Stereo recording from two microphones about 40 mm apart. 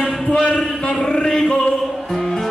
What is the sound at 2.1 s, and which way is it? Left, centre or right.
Music, centre.